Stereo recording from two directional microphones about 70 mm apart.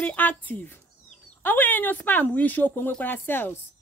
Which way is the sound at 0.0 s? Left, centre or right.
Left.